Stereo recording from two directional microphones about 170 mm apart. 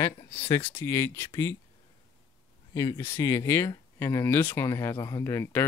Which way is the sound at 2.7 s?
20° left (ahead or behind).